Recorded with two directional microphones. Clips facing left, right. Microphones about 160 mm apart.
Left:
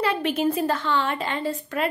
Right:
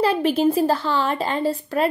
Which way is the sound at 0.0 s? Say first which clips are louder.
Right 5 dB; 35° right (ahead or behind).